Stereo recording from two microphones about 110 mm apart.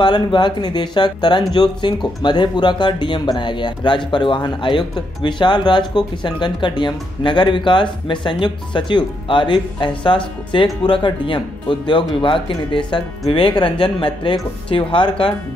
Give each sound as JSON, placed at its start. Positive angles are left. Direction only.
{"t": 0.0, "sound": "speech", "side_deg": 45}